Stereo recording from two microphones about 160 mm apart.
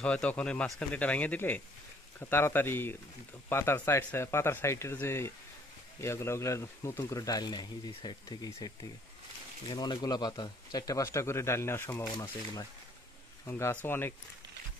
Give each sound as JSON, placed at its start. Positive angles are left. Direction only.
{"t": 0.0, "sound": "speech", "side_deg": 5}